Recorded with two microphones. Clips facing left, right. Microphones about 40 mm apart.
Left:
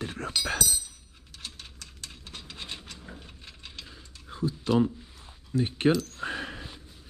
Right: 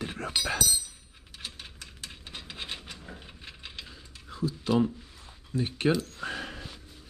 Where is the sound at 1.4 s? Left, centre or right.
Centre.